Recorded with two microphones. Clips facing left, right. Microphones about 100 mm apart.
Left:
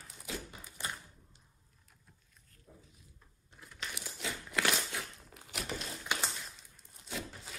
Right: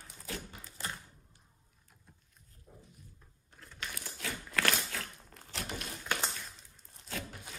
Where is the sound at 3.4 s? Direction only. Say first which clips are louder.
Even; 10° left (ahead or behind).